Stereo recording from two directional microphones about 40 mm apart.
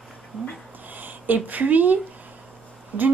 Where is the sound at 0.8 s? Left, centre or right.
Right.